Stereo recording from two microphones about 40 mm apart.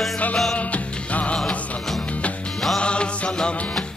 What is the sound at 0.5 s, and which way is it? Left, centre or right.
Music, left.